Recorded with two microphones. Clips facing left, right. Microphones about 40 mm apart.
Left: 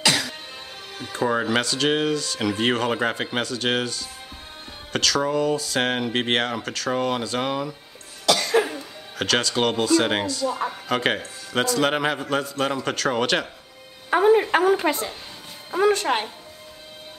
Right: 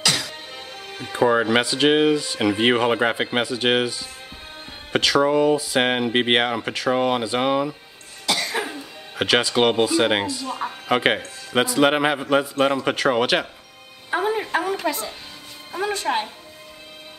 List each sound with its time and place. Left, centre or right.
0.0 s music: centre
0.9 s speech: right
8.5 s cough: centre
9.1 s a man's voice: centre
14.8 s speech: left
15.9 s music: left